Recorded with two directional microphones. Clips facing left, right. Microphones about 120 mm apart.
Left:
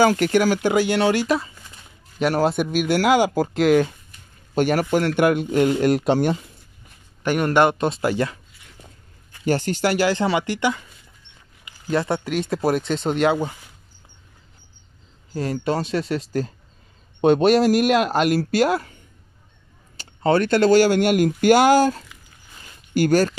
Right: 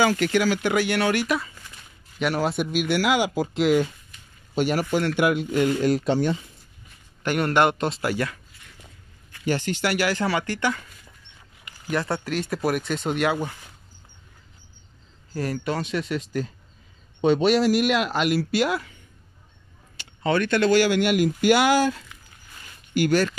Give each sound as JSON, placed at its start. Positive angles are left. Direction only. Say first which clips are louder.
{"t": 0.0, "sound": "speech", "louder": "left 4 dB", "side_deg": 45}
{"t": 0.6, "sound": "speech", "louder": "left 4 dB", "side_deg": 30}
{"t": 5.9, "sound": "speech", "louder": "left 3 dB", "side_deg": 65}
{"t": 7.2, "sound": "speech", "louder": "left 3 dB", "side_deg": 15}
{"t": 9.3, "sound": "speech", "louder": "left 4 dB", "side_deg": 40}
{"t": 15.3, "sound": "speech", "louder": "left 4 dB", "side_deg": 25}
{"t": 17.2, "sound": "speech", "louder": "left 4 dB", "side_deg": 50}
{"t": 20.0, "sound": "speech", "louder": "left 4 dB", "side_deg": 35}